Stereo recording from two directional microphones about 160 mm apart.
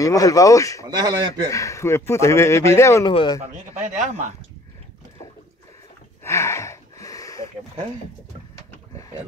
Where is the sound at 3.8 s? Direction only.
50° right (ahead or behind).